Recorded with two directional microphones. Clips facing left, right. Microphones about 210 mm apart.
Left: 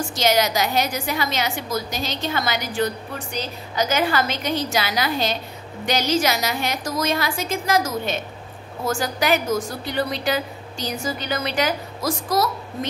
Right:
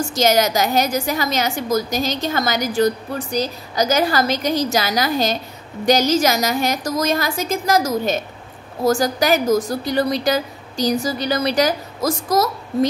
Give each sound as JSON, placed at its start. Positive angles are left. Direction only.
{"t": 0.1, "sound": "a woman's voice", "side_deg": -45}